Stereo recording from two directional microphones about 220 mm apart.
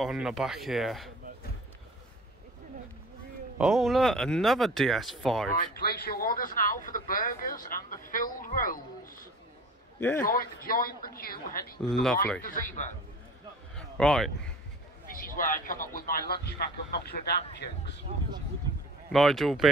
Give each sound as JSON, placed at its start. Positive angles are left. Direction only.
{"t": 0.0, "sound": "speech", "side_deg": 0}
{"t": 3.5, "sound": "speech", "side_deg": -5}
{"t": 5.5, "sound": "speech", "side_deg": 45}
{"t": 9.9, "sound": "a man's voice", "side_deg": 10}
{"t": 10.2, "sound": "speech", "side_deg": 40}
{"t": 11.9, "sound": "speech", "side_deg": 0}
{"t": 12.4, "sound": "speech", "side_deg": 35}
{"t": 13.7, "sound": "a sound", "side_deg": 0}
{"t": 15.0, "sound": "speech", "side_deg": 40}
{"t": 19.1, "sound": "speech", "side_deg": 0}